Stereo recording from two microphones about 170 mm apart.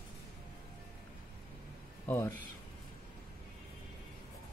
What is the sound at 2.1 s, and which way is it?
Speech, 15° left (ahead or behind).